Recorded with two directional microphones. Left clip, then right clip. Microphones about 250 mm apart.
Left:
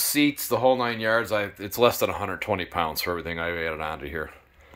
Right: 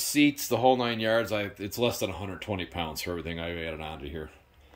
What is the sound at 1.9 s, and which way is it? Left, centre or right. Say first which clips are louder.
Speech: left 7 dB; left.